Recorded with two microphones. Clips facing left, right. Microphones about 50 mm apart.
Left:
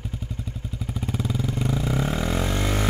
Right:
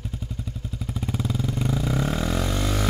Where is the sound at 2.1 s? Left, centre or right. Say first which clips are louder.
Even; centre.